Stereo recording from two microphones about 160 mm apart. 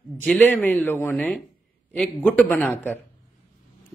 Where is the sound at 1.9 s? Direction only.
5° left (ahead or behind).